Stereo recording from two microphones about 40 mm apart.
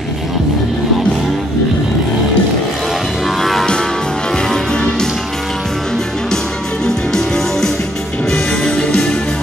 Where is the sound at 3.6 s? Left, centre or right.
Centre.